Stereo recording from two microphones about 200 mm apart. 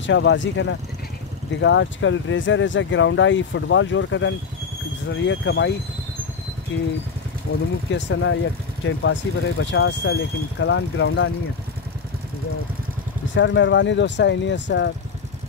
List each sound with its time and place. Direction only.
0.0 s speech: 65° left (ahead or behind)
6.7 s speech: 70° left (ahead or behind)
13.3 s speech: 65° left (ahead or behind)